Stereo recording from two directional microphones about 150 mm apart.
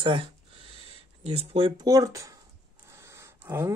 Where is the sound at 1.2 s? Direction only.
40° right (ahead or behind).